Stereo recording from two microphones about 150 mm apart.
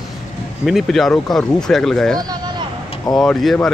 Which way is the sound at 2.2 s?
30° right (ahead or behind).